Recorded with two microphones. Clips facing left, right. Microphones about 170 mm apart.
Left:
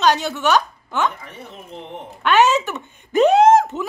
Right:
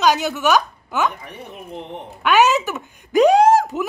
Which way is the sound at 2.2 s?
Centre (ahead or behind).